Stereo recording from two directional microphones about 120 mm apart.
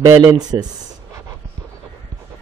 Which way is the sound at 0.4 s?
35° right (ahead or behind).